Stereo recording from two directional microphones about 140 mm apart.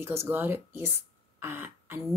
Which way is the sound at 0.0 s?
20° right (ahead or behind).